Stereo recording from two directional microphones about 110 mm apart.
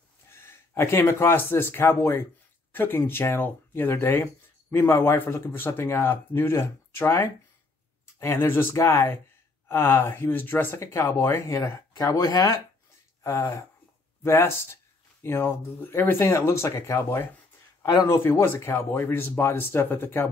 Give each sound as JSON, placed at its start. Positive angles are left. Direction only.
{"t": 0.3, "sound": "speech", "side_deg": 25}